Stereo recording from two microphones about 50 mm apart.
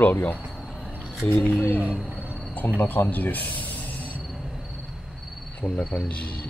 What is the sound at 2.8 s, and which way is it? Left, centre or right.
Speech, left.